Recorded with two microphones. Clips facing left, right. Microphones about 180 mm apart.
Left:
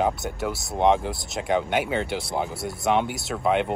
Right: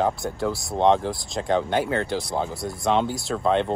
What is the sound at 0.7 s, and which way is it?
Speech, 10° left (ahead or behind).